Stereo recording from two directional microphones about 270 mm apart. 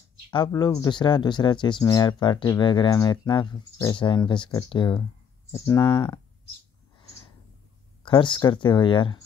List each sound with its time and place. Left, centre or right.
0.3 s speech: centre
8.0 s speech: centre